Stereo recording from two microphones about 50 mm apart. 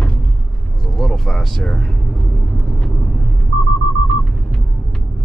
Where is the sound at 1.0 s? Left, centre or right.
Centre.